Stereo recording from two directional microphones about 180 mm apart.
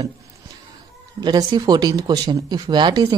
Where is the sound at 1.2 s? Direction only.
20° right (ahead or behind).